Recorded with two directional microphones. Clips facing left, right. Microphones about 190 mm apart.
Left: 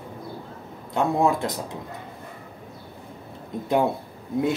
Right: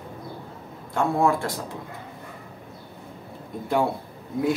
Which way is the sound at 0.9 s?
20° left (ahead or behind).